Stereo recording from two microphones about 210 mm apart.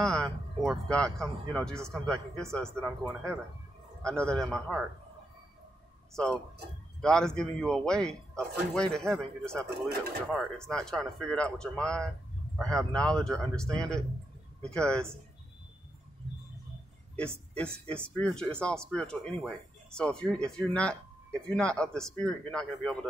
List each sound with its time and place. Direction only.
0.0 s speech: 5° left (ahead or behind)
4.0 s speech: 5° left (ahead or behind)
7.0 s speech: 5° left (ahead or behind)
9.7 s speech: 50° right (ahead or behind)
10.2 s speech: centre (ahead or behind)
17.1 s speech: 5° left (ahead or behind)